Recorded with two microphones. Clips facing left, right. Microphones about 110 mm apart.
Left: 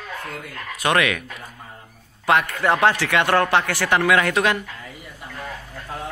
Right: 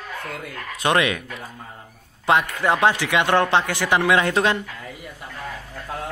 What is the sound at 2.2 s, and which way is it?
A man's voice, 15° right (ahead or behind).